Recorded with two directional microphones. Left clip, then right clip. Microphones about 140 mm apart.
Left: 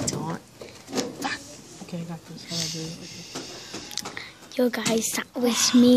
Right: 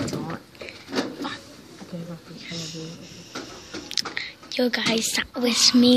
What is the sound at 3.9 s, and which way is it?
Speech, 35° left (ahead or behind).